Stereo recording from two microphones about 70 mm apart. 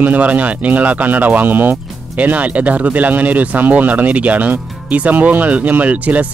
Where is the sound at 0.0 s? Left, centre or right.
Right.